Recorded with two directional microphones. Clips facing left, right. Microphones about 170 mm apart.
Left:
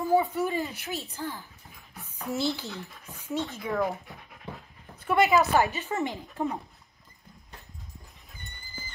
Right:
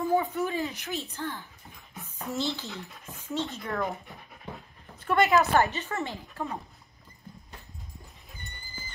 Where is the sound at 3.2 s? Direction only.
15° left (ahead or behind).